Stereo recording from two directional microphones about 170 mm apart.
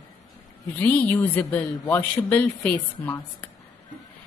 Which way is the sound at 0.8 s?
10° left (ahead or behind).